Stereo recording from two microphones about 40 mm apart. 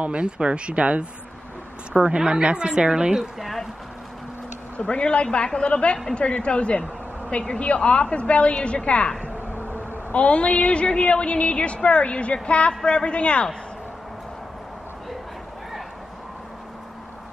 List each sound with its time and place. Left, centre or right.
0.0 s speech: right
2.1 s a woman's voice: centre
3.3 s a sound: centre
4.7 s a woman's voice: left
10.1 s a woman's voice: left